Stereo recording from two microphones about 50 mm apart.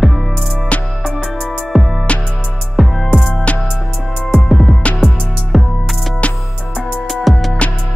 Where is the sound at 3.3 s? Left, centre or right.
Left.